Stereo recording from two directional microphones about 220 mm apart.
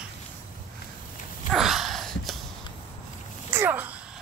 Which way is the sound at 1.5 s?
Centre (ahead or behind).